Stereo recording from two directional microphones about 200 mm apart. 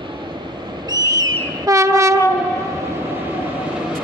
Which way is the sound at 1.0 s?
20° right (ahead or behind).